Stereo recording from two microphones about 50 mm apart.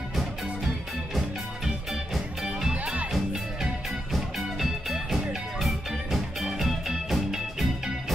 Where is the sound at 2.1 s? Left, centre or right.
Centre.